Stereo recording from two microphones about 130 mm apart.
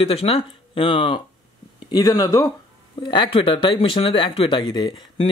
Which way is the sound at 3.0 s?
40° left (ahead or behind).